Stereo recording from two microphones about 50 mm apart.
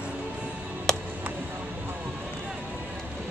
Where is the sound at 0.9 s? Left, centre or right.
Centre.